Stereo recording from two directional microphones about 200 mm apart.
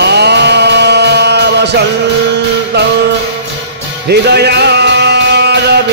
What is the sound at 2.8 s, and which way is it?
Music, 55° right (ahead or behind).